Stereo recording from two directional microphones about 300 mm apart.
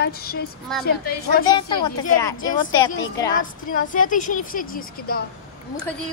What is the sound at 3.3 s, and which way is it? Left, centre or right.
A woman's voice, left.